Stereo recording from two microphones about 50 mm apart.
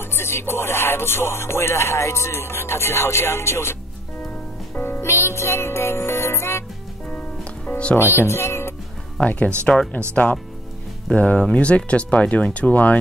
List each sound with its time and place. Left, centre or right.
0.0 s music: left
4.7 s music: left
5.0 s music: left
7.1 s music: left
8.0 s speech: left
9.2 s speech: left
11.1 s speech: left